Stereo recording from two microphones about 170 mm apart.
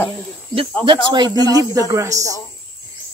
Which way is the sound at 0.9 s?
25° right (ahead or behind).